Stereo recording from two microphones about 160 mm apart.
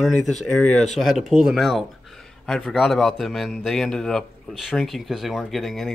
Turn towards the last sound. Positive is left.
turn(degrees=0)  # may be behind; listen again after turning